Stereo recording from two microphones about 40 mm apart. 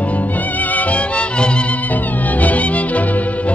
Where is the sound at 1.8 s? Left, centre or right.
Left.